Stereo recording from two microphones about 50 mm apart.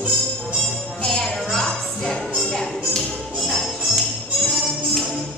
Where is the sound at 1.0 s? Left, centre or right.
Centre.